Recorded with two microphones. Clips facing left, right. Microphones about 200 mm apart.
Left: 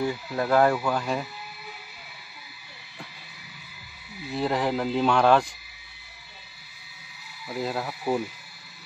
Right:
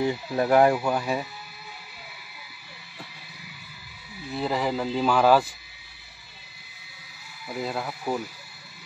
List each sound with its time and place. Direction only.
0.0 s speech: 20° right (ahead or behind)
4.4 s speech: centre (ahead or behind)
7.4 s speech: centre (ahead or behind)